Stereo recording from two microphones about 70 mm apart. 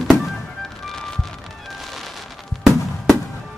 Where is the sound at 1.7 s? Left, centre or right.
Centre.